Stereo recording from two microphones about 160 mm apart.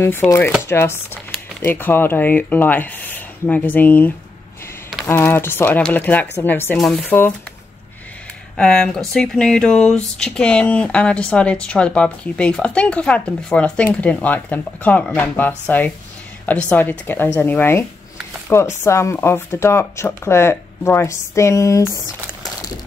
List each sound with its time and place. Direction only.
0.0 s speech: 15° left (ahead or behind)
8.5 s speech: 5° left (ahead or behind)